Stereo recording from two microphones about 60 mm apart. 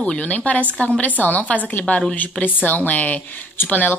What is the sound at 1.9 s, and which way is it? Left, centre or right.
Speech, centre.